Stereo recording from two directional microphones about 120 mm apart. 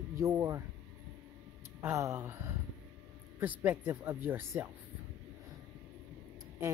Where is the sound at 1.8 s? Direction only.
25° right (ahead or behind).